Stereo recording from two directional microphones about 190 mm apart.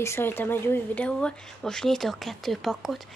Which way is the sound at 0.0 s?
15° left (ahead or behind).